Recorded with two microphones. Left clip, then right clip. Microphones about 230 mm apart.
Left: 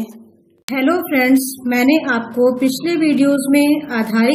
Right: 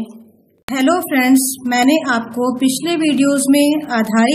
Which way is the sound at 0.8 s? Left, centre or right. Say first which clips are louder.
Right 1 dB; right.